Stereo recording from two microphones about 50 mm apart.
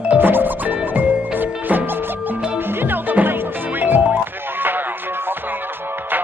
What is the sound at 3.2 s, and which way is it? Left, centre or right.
Music, right.